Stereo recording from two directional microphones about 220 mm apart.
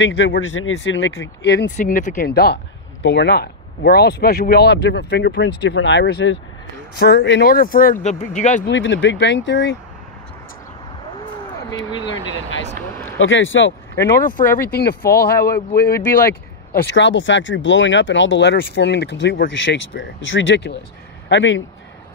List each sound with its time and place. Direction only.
0.0 s speech: 55° left (ahead or behind)
0.5 s speech: 70° left (ahead or behind)
1.4 s speech: 50° left (ahead or behind)
1.8 s speech: 35° left (ahead or behind)
8.6 s speech: 55° left (ahead or behind)
13.2 s speech: 60° left (ahead or behind)
14.4 s speech: 10° left (ahead or behind)
15.0 s speech: 45° left (ahead or behind)